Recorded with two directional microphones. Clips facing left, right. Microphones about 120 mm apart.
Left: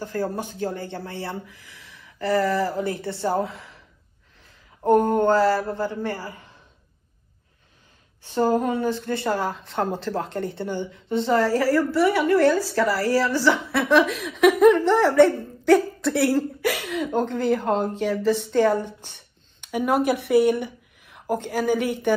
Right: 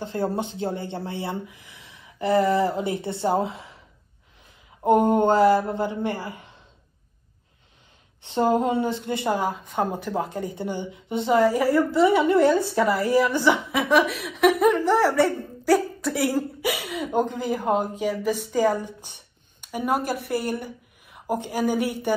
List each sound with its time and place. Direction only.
0.0 s speech: 20° right (ahead or behind)
4.8 s speech: 20° right (ahead or behind)
8.2 s a woman's voice: 20° right (ahead or behind); by 22.1 s 5° right (ahead or behind)